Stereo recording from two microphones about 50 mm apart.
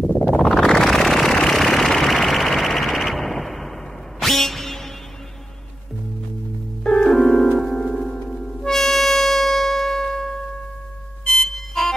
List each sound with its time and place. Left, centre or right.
0.4 s a sound: centre
1.4 s vehicle: centre
4.2 s a sound: centre
6.8 s music: centre
7.8 s music: centre
8.1 s harmonica: centre
11.2 s music: centre